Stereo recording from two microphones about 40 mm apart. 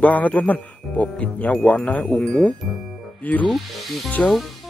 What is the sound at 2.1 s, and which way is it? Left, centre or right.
Speech, left.